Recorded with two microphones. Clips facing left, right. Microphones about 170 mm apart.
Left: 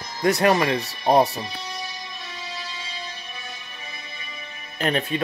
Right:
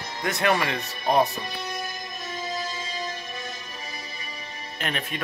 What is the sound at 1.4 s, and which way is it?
Music, 50° right (ahead or behind).